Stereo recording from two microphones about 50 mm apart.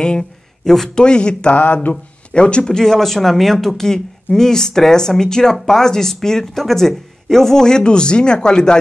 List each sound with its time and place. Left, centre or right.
0.0 s speech: centre
1.6 s speech: left
2.3 s speech: centre